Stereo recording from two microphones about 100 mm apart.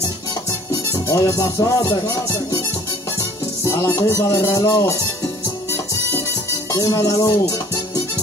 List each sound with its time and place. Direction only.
0.7 s music: 35° left (ahead or behind)
3.2 s music: 30° left (ahead or behind)
6.7 s music: 35° left (ahead or behind)